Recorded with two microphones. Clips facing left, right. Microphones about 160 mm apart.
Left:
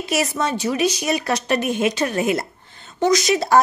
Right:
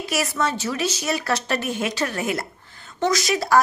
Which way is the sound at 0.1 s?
20° left (ahead or behind).